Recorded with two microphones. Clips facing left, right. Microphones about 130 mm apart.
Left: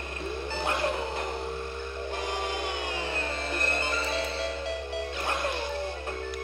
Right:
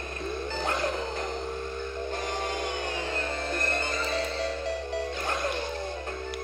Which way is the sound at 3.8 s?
10° left (ahead or behind).